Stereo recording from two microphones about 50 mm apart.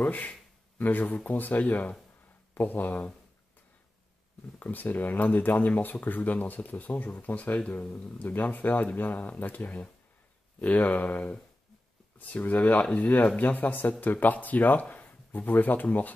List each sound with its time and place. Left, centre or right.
0.0 s speech: left
4.6 s speech: left
7.8 s speech: centre
8.2 s speech: left